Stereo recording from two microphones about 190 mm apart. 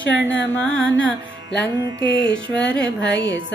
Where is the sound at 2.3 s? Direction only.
5° left (ahead or behind).